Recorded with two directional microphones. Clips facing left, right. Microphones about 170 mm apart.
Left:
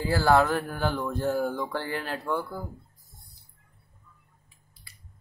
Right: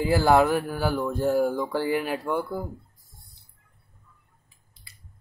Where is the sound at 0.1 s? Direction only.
15° right (ahead or behind).